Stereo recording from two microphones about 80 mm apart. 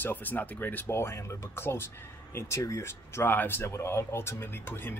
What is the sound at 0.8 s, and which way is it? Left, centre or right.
Speech, left.